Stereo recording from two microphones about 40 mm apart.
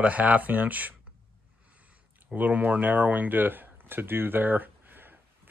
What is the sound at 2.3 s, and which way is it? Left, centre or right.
Speech, right.